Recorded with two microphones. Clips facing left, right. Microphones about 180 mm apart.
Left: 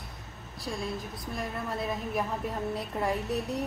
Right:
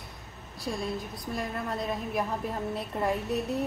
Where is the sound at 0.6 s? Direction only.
Centre (ahead or behind).